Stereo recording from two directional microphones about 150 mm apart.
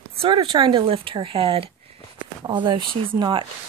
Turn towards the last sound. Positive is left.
turn(degrees=-35)  # may be behind; listen again after turning